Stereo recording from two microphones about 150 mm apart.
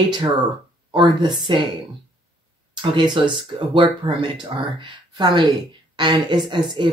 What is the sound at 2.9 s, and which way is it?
Speech, 30° right (ahead or behind).